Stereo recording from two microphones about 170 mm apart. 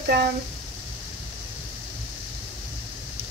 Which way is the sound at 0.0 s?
70° right (ahead or behind).